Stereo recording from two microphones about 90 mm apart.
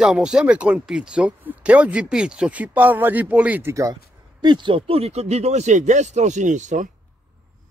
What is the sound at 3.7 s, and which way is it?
Speech, 40° right (ahead or behind).